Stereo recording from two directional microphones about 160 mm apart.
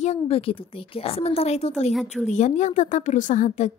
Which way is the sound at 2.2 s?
45° left (ahead or behind).